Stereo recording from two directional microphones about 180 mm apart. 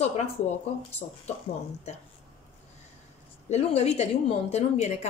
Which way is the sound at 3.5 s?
35° left (ahead or behind).